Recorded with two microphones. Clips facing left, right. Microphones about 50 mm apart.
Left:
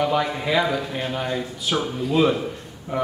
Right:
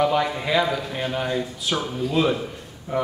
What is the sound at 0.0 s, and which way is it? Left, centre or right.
A man's voice, centre.